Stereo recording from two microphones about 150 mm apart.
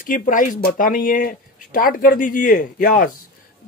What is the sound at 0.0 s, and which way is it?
Speech, 65° left (ahead or behind).